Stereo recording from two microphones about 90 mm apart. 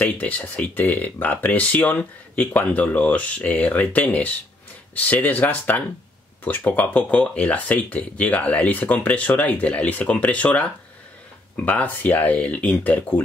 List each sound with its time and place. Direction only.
0.0 s speech: 15° left (ahead or behind)